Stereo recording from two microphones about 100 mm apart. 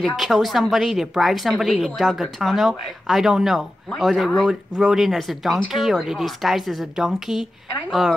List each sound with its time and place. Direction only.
0.0 s a woman's voice: centre (ahead or behind)